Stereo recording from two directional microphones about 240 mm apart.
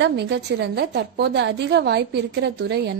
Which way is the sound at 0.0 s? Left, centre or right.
Right.